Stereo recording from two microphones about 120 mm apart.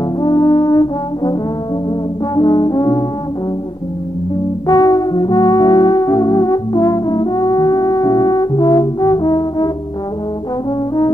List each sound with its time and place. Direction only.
0.2 s brass instrument: 30° left (ahead or behind)
2.3 s brass instrument: 35° left (ahead or behind)
4.6 s brass instrument: 30° left (ahead or behind)